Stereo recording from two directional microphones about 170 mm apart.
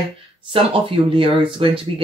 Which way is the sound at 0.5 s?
30° right (ahead or behind).